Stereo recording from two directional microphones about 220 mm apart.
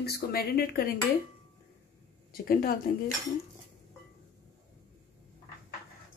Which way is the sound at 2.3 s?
40° left (ahead or behind).